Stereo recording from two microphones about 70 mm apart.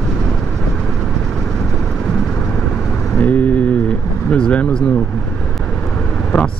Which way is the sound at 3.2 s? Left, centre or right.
Left.